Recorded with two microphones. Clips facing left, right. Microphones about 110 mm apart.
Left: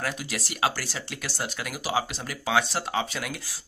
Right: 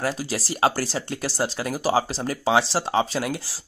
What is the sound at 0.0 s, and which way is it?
Speech, 35° right (ahead or behind).